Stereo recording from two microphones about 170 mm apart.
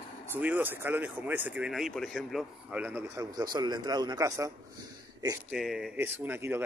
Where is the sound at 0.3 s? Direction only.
10° right (ahead or behind).